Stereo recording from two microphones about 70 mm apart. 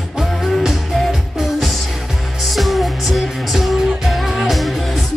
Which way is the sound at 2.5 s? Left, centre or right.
Centre.